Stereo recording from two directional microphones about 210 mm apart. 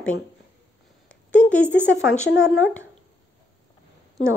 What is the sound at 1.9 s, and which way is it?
Speech, 65° left (ahead or behind).